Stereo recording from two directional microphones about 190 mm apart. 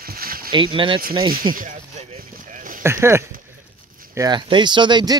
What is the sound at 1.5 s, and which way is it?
Speech, 45° right (ahead or behind).